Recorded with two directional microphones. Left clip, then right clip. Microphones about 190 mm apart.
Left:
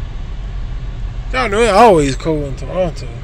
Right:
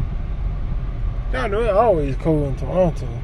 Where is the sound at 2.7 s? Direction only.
20° right (ahead or behind).